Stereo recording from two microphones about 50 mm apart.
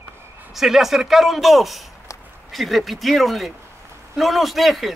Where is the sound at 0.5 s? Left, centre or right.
Centre.